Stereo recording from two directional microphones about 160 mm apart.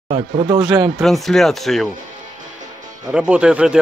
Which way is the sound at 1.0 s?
Centre (ahead or behind).